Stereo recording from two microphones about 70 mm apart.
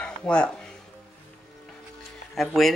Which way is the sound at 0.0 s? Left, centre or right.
Centre.